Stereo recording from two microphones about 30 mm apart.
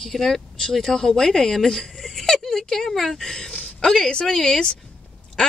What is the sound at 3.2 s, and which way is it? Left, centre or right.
Speech, centre.